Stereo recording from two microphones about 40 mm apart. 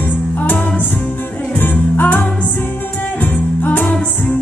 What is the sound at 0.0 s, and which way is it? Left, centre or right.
Music, left.